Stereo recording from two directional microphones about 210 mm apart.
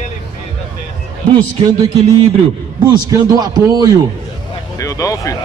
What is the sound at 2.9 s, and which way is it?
A man's voice, 20° right (ahead or behind).